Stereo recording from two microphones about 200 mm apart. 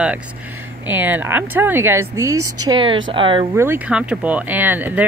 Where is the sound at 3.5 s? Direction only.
10° right (ahead or behind).